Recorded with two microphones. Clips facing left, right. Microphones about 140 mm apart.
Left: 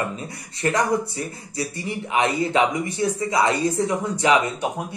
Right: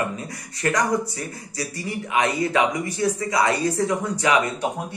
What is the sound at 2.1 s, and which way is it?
A man's voice, 25° left (ahead or behind).